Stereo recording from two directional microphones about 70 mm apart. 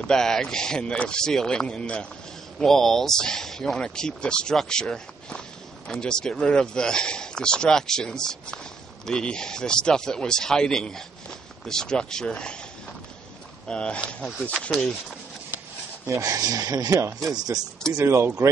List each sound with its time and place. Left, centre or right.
0.0 s speech: centre
13.7 s speech: centre
16.1 s speech: right
17.9 s speech: right